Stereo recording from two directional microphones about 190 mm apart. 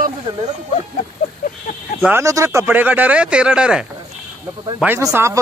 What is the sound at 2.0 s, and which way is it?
Speech, 15° right (ahead or behind).